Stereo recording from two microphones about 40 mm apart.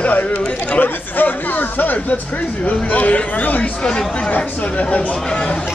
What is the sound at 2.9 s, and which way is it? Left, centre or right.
Speech, left.